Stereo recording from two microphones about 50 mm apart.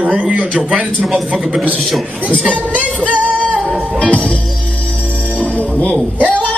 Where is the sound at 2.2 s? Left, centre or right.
Left.